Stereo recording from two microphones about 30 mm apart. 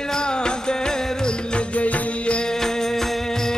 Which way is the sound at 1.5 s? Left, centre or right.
Left.